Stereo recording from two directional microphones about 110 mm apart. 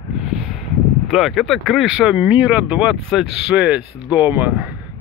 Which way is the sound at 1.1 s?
Centre (ahead or behind).